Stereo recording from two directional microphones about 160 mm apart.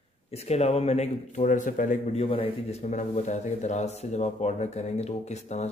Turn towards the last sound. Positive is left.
turn(degrees=45)  # may be behind; listen again after turning